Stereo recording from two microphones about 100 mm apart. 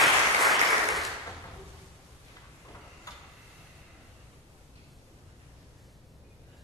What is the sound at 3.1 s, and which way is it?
Tick-tock, 35° left (ahead or behind).